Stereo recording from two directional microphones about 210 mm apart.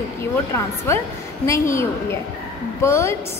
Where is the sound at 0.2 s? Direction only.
10° left (ahead or behind).